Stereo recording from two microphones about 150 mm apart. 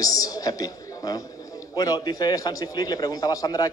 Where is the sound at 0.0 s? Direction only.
25° left (ahead or behind).